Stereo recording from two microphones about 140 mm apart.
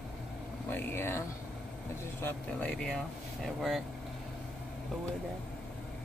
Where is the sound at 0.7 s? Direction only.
15° left (ahead or behind).